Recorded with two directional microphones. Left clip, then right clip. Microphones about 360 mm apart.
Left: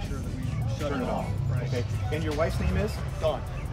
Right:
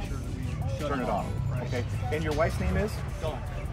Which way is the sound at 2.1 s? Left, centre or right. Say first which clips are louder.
Right 1 dB; centre.